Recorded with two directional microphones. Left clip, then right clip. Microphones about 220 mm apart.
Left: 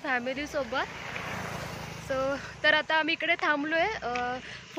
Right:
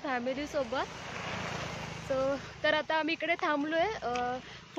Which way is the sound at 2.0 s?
Centre (ahead or behind).